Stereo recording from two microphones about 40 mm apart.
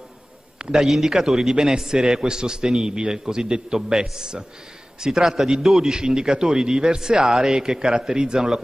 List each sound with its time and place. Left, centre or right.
0.7 s a man's voice: centre